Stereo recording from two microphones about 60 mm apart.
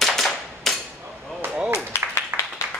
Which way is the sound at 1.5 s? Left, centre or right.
Centre.